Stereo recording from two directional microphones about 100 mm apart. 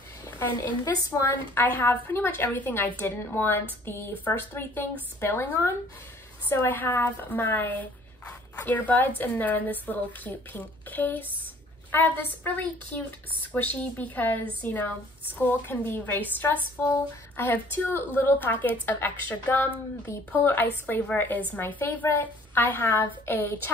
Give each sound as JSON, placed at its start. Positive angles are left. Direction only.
{"t": 0.6, "sound": "a woman's voice", "side_deg": 25}